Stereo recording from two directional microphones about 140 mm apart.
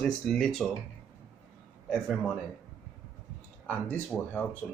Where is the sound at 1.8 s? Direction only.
5° left (ahead or behind).